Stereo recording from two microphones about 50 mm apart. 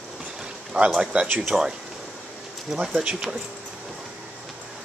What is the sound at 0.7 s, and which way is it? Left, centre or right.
Speech, right.